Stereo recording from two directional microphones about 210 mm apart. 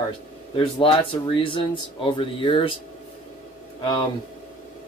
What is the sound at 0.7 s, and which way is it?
Speech, 25° left (ahead or behind).